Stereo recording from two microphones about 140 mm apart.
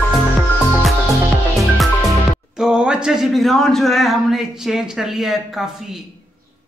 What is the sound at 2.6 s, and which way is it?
A man's voice, 5° right (ahead or behind).